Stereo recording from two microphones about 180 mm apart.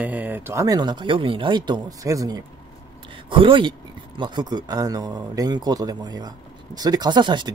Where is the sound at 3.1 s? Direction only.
30° right (ahead or behind).